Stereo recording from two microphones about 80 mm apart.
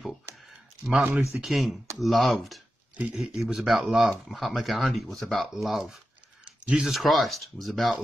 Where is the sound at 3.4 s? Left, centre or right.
Centre.